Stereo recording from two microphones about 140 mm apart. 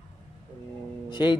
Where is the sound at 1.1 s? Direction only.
30° left (ahead or behind).